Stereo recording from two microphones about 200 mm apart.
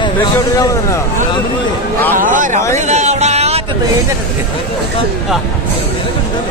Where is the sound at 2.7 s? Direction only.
35° right (ahead or behind).